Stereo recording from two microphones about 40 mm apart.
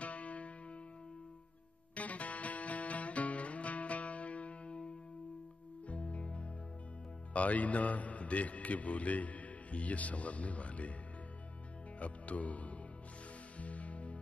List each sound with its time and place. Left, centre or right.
0.0 s music: left
2.0 s music: left
7.3 s a man's voice: left
12.0 s speech: left
13.6 s music: left